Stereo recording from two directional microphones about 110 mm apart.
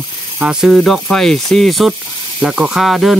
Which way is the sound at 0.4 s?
5° right (ahead or behind).